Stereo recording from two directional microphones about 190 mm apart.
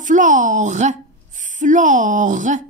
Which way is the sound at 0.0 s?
40° right (ahead or behind).